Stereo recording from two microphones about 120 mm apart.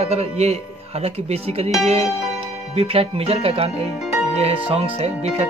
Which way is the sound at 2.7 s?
55° right (ahead or behind).